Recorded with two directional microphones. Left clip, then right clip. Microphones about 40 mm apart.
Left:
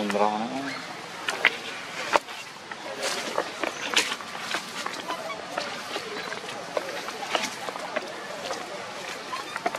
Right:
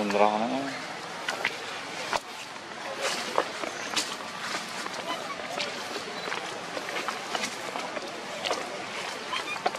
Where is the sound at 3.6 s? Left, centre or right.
Centre.